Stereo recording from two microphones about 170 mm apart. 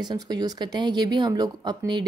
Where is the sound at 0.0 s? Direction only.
25° right (ahead or behind).